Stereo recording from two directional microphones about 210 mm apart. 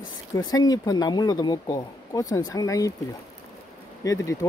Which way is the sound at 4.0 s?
15° left (ahead or behind).